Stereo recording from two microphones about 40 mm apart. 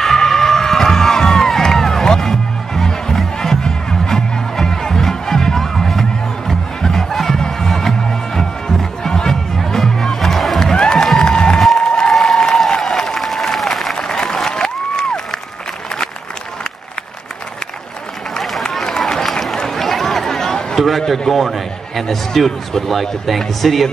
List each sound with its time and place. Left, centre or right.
0.0 s crowd: centre
8.4 s music: centre
10.7 s music: centre
11.8 s applause: centre
12.1 s applause: centre
13.9 s applause: centre
18.4 s run: centre
21.3 s speech: centre